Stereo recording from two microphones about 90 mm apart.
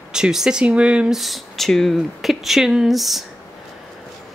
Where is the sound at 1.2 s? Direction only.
Centre (ahead or behind).